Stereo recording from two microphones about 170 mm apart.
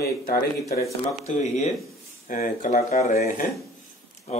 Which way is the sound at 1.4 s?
45° left (ahead or behind).